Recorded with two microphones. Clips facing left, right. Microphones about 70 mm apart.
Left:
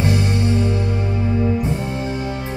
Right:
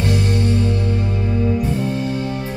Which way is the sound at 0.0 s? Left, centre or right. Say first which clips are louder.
Even; centre.